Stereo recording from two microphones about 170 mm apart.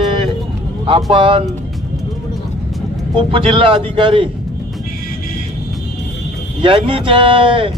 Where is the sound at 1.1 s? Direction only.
30° right (ahead or behind).